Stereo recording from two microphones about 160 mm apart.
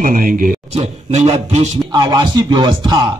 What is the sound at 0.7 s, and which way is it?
A man's voice, 45° right (ahead or behind).